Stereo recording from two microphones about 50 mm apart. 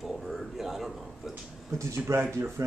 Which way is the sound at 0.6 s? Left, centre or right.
Centre.